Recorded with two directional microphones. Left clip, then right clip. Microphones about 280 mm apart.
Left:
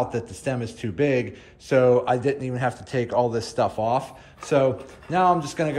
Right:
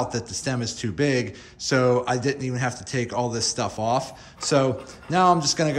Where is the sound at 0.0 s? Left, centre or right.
Centre.